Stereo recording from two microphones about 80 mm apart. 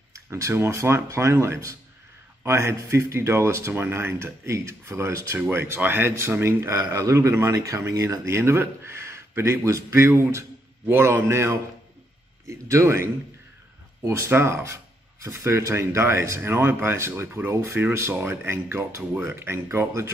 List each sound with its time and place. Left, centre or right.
0.1 s speech: right